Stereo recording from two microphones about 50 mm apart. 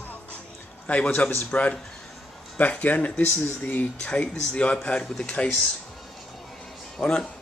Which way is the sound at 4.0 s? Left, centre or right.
Left.